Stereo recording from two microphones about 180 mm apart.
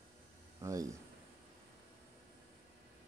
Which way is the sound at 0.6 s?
20° right (ahead or behind).